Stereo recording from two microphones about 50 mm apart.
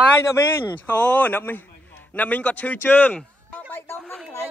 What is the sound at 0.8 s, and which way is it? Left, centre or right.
A man's voice, left.